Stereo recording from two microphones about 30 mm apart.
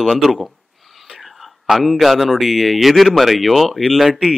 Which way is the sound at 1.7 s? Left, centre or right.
Centre.